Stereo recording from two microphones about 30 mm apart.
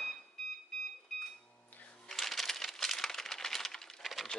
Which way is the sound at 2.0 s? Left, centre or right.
Centre.